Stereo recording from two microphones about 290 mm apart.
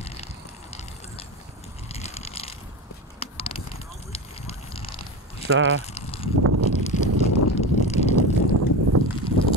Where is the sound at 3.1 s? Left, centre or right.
Centre.